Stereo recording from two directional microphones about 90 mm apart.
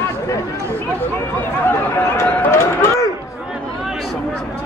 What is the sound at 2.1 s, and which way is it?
Run, 30° left (ahead or behind).